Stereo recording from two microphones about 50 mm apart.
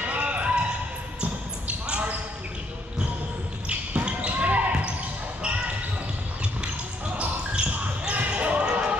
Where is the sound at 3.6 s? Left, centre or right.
Right.